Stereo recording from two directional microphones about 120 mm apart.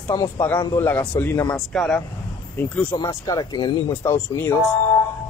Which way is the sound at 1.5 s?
5° left (ahead or behind).